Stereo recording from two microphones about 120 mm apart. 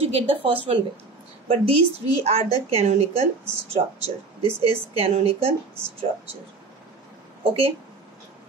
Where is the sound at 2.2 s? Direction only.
60° right (ahead or behind).